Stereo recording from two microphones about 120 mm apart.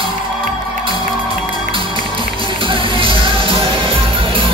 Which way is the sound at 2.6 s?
45° right (ahead or behind).